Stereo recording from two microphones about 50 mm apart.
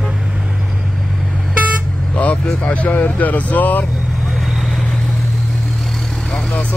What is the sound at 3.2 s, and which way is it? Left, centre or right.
Speech, left.